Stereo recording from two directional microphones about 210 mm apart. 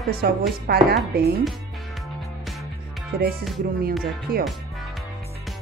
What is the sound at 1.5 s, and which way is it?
Music, centre (ahead or behind).